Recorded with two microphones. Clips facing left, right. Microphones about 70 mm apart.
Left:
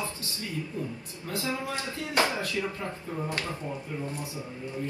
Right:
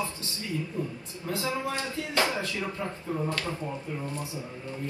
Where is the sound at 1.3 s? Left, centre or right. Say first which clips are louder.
Right 1 dB; right.